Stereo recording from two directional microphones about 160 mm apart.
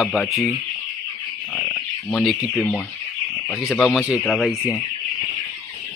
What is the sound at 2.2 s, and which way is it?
Speech, 20° left (ahead or behind).